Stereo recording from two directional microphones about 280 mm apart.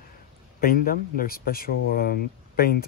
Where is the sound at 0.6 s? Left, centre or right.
Left.